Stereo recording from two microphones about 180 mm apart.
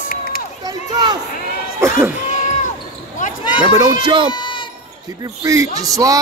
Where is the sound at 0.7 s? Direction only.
25° right (ahead or behind).